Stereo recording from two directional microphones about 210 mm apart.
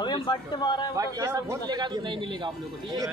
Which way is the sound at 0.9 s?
15° right (ahead or behind).